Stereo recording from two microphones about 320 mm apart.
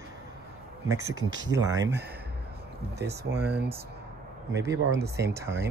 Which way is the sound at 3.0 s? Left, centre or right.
Right.